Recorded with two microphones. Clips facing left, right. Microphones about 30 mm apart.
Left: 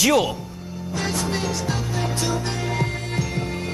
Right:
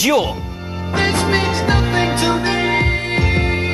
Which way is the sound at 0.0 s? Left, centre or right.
Centre.